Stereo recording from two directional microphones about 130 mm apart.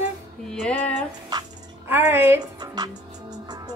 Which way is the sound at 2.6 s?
30° right (ahead or behind).